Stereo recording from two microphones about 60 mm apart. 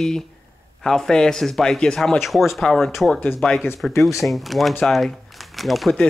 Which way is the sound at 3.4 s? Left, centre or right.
Centre.